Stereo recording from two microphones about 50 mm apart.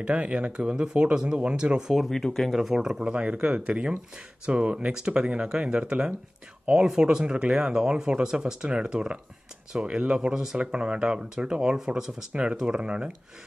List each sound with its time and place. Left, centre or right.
0.0 s speech: right
2.0 s speech: centre